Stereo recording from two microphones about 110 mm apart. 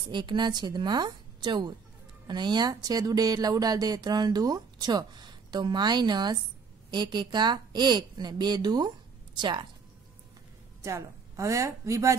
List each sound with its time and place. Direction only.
0.0 s speech: 45° right (ahead or behind)
10.8 s a woman's voice: 25° right (ahead or behind)